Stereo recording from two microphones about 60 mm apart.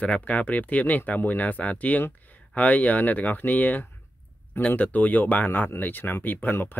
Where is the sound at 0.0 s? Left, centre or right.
Left.